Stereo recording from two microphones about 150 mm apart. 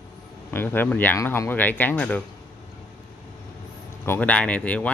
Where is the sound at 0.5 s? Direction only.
15° left (ahead or behind).